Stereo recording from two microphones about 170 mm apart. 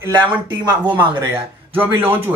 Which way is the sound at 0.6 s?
25° right (ahead or behind).